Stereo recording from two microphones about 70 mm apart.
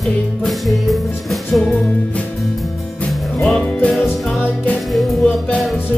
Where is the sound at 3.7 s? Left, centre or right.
Centre.